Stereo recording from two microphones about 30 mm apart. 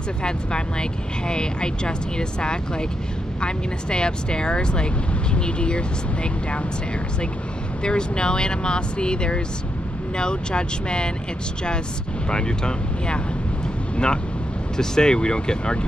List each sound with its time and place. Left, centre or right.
0.2 s speech: left
7.8 s speech: left
12.3 s speech: left